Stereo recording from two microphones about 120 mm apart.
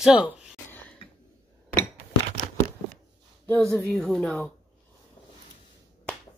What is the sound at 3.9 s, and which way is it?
Speech, centre (ahead or behind).